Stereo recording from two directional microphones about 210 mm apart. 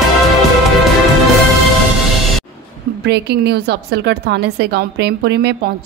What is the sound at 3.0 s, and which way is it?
A woman's voice, 50° right (ahead or behind).